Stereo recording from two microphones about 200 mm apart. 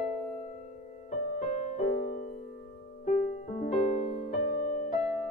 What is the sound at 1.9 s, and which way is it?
Music, 50° left (ahead or behind).